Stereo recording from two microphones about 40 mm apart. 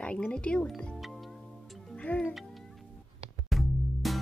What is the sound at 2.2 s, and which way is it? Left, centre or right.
Speech, centre.